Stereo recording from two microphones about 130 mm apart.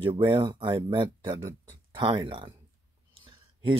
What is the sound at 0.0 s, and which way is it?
Speech, 40° right (ahead or behind).